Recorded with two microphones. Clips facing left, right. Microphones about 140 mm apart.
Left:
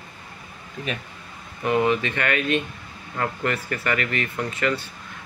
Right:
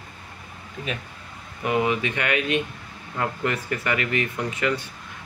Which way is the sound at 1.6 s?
10° right (ahead or behind).